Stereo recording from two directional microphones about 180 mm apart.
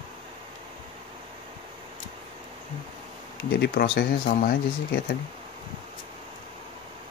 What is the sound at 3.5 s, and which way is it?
Speech, 65° left (ahead or behind).